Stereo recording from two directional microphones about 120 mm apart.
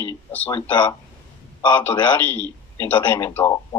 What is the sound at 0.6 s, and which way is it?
Speech, 40° left (ahead or behind).